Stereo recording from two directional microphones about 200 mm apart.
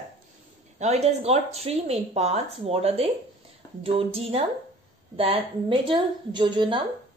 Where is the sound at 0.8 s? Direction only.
35° right (ahead or behind).